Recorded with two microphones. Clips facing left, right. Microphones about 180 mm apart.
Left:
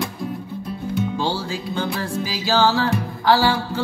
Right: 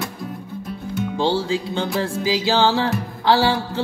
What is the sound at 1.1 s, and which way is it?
Music, 20° right (ahead or behind).